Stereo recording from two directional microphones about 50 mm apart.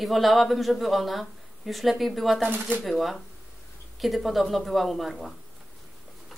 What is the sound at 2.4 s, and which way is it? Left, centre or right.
Speech, right.